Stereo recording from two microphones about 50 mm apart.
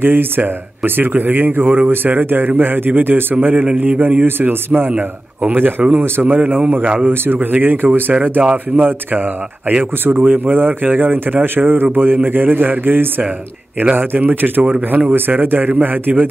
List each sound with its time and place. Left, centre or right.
0.0 s speech: right
4.9 s a man's voice: right
5.6 s speech: right
6.2 s speech: right
8.1 s a man's voice: right